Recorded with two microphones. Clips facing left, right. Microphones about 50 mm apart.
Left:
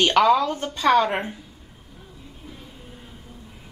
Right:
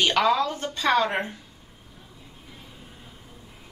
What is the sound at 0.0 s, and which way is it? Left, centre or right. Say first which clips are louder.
A woman's voice: left 4 dB; centre.